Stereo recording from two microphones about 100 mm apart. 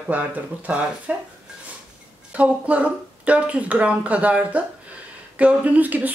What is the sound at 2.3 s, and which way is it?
Speech, 15° right (ahead or behind).